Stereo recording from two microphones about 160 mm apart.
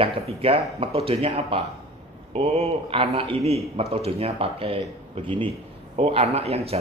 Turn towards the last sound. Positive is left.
turn(degrees=-40)  # may be behind; listen again after turning